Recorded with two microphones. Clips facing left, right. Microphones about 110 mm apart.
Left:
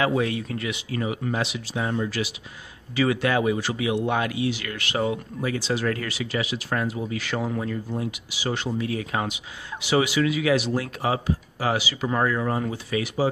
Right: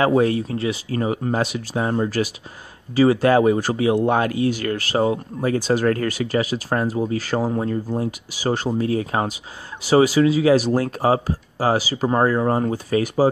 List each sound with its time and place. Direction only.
0.0 s speech: 40° right (ahead or behind)